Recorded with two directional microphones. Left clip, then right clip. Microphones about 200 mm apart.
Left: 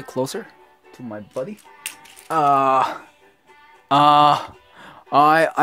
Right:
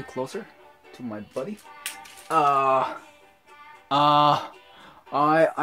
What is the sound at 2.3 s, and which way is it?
Speech, 45° left (ahead or behind).